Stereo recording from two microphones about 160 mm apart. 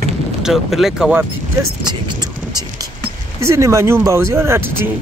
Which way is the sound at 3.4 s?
20° right (ahead or behind).